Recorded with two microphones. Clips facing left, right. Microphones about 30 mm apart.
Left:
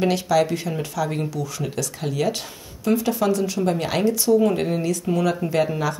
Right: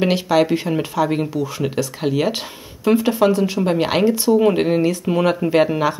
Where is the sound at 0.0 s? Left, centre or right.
Right.